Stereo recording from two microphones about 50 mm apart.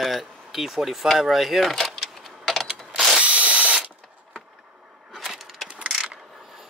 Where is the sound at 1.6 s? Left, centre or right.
Centre.